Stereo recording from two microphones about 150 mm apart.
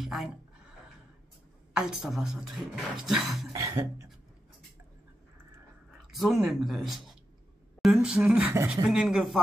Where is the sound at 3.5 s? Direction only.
20° right (ahead or behind).